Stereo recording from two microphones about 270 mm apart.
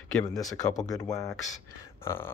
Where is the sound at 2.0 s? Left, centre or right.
Centre.